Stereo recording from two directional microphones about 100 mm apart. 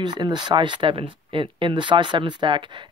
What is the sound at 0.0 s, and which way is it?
Speech, 50° right (ahead or behind).